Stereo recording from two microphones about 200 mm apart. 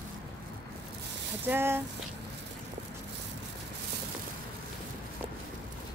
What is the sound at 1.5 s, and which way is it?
Speech, 10° right (ahead or behind).